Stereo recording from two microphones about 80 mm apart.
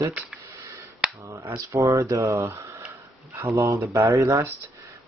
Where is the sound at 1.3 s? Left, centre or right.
Right.